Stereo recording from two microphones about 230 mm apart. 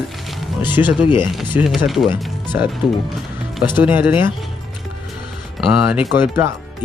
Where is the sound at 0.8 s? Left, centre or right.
Centre.